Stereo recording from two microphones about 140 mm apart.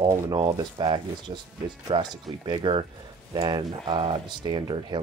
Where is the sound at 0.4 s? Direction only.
30° right (ahead or behind).